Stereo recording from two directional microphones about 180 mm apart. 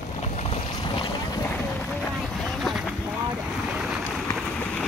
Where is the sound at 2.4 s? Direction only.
Centre (ahead or behind).